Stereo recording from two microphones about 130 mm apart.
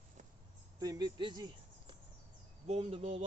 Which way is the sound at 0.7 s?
30° right (ahead or behind).